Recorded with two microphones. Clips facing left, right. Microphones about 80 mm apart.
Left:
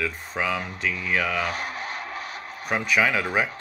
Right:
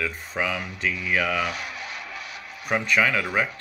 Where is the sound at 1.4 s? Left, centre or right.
Left.